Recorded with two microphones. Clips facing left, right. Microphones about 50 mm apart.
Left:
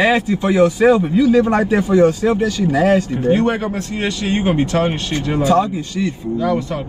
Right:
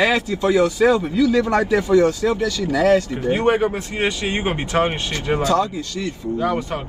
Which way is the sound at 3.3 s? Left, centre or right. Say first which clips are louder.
Even; right.